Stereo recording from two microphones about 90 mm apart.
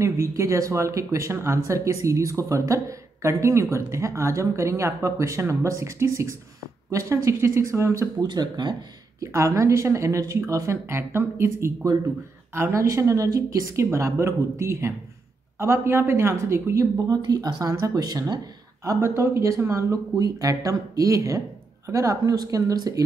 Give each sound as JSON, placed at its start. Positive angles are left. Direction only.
{"t": 0.0, "sound": "speech", "side_deg": -35}
{"t": 8.3, "sound": "speech", "side_deg": -55}
{"t": 9.2, "sound": "speech", "side_deg": -35}
{"t": 17.1, "sound": "speech", "side_deg": -45}
{"t": 18.9, "sound": "speech", "side_deg": -30}